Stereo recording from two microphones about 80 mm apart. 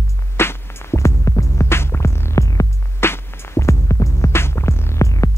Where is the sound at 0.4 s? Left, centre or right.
Left.